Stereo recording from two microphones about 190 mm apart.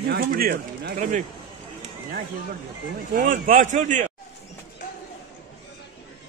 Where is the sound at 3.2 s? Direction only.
45° right (ahead or behind).